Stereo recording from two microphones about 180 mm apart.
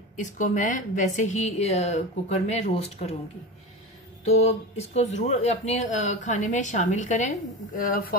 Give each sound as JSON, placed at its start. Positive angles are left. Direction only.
{"t": 0.1, "sound": "a woman's voice", "side_deg": 45}
{"t": 4.3, "sound": "a woman's voice", "side_deg": 40}
{"t": 8.1, "sound": "speech", "side_deg": 55}